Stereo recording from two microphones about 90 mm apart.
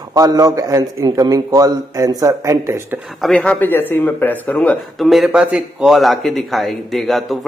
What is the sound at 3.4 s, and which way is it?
Speech, 20° left (ahead or behind).